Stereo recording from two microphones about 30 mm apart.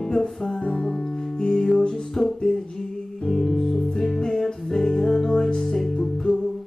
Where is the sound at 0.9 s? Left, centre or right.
Left.